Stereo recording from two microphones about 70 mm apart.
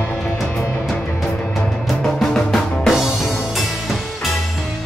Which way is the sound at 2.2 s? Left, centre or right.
Centre.